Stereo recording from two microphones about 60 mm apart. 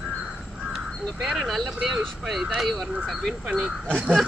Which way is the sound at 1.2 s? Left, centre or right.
Centre.